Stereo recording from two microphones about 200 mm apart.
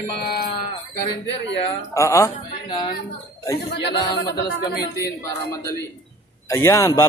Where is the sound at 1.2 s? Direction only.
60° left (ahead or behind).